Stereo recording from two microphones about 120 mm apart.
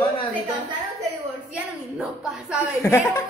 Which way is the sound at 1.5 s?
5° right (ahead or behind).